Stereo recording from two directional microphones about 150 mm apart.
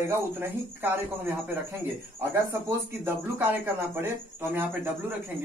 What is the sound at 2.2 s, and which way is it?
Speech, 20° right (ahead or behind).